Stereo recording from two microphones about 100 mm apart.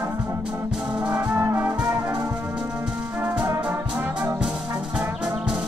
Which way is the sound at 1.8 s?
25° right (ahead or behind).